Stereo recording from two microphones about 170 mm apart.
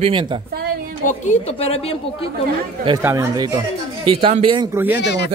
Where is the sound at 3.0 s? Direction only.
20° right (ahead or behind).